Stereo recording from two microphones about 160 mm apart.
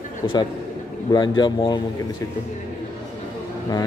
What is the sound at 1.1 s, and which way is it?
Speech, 25° left (ahead or behind).